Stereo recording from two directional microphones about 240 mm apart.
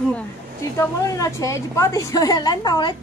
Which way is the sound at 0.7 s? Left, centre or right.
Centre.